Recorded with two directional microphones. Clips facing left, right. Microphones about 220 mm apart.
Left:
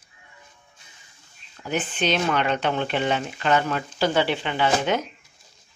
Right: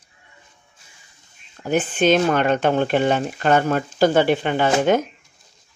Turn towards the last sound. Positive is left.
turn(degrees=-45)  # may be behind; listen again after turning